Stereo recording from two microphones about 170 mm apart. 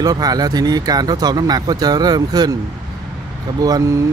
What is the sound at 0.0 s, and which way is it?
Speech, 20° right (ahead or behind).